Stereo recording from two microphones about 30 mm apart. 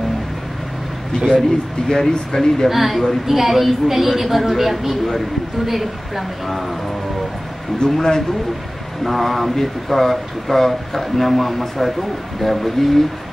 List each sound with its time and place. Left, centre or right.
1.9 s speech: left
2.7 s speech: centre
7.8 s speech: left
9.0 s speech: centre